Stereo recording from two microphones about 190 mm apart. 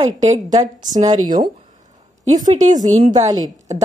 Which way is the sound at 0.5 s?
20° right (ahead or behind).